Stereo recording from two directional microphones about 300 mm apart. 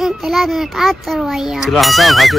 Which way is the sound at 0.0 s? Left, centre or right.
Centre.